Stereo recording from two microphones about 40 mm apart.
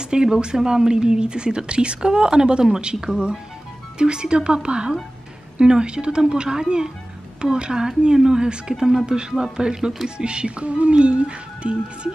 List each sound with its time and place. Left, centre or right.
0.0 s speech: centre